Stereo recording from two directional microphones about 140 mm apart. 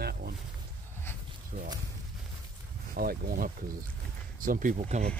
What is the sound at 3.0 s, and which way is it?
Speech, 90° right.